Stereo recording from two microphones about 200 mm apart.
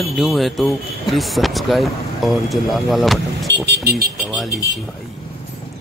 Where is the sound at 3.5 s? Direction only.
55° right (ahead or behind).